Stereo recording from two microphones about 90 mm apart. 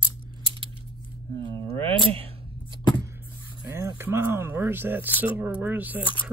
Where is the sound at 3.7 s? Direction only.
30° right (ahead or behind).